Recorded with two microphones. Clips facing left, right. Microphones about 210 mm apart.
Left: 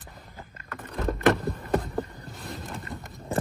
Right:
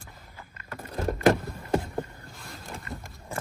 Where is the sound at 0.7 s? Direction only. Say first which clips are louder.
Even; 30° right (ahead or behind).